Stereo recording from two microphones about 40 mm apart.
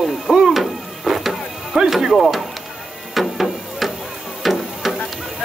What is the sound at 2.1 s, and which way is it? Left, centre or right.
Speech, centre.